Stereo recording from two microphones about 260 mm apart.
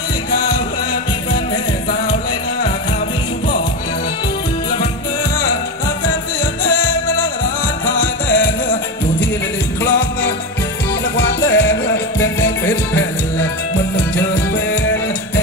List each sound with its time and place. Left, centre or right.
11.2 s music: left
12.2 s music: centre